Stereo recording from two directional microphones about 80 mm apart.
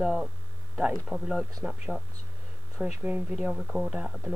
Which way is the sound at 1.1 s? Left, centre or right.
Right.